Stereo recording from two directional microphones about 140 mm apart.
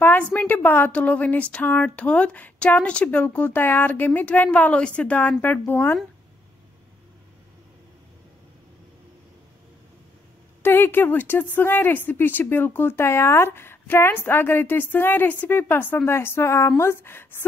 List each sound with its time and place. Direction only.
0.0 s a woman's voice: 15° left (ahead or behind)
10.6 s a woman's voice: 15° left (ahead or behind)